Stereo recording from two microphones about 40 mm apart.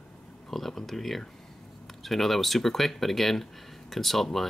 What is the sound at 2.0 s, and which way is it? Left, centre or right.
Speech, centre.